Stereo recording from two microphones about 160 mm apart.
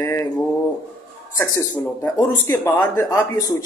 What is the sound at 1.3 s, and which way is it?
Speech, 20° left (ahead or behind).